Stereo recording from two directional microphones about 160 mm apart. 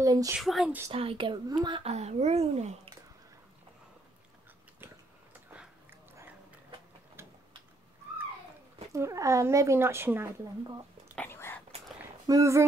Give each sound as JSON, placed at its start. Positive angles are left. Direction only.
{"t": 0.0, "sound": "speech", "side_deg": -20}
{"t": 0.4, "sound": "speech", "side_deg": 0}
{"t": 0.8, "sound": "speech", "side_deg": -35}
{"t": 1.8, "sound": "speech", "side_deg": -40}
{"t": 7.2, "sound": "a sound", "side_deg": -15}
{"t": 8.9, "sound": "speech", "side_deg": -20}
{"t": 11.1, "sound": "whispering", "side_deg": 15}
{"t": 12.3, "sound": "speech", "side_deg": -20}